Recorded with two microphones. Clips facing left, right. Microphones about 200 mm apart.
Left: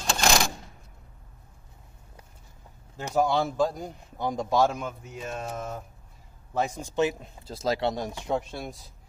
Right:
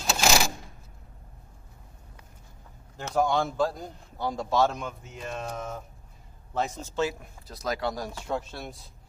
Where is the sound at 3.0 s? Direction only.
10° left (ahead or behind).